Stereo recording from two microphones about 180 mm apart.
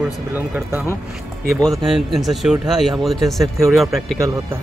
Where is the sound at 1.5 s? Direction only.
Centre (ahead or behind).